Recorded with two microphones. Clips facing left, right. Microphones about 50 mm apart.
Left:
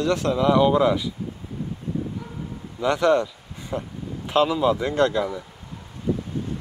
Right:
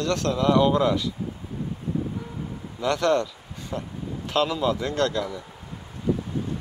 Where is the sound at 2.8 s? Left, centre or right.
Centre.